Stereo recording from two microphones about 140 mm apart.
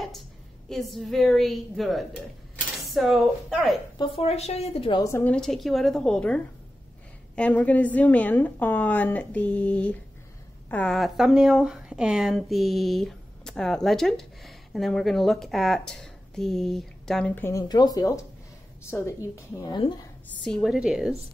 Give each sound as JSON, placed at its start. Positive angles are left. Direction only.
{"t": 0.7, "sound": "speech", "side_deg": 0}
{"t": 4.0, "sound": "a woman's voice", "side_deg": 45}
{"t": 4.9, "sound": "speech", "side_deg": 20}
{"t": 5.2, "sound": "a woman's voice", "side_deg": 5}
{"t": 17.4, "sound": "speech", "side_deg": 20}
{"t": 19.6, "sound": "speech", "side_deg": 30}
{"t": 20.4, "sound": "speech", "side_deg": 0}